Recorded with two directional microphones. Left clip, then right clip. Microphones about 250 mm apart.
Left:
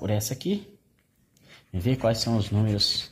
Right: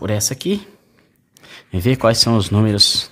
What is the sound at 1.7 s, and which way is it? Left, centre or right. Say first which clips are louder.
Speech: right 10 dB; right.